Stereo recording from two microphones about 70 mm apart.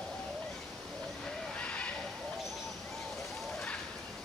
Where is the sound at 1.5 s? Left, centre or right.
Centre.